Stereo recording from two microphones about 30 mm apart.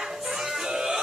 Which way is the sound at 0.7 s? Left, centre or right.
Right.